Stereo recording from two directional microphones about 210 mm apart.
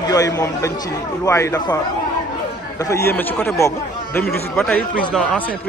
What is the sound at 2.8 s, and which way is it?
Speech, 15° left (ahead or behind).